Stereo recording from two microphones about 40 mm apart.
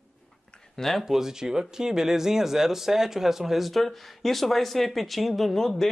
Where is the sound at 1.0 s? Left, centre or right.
Centre.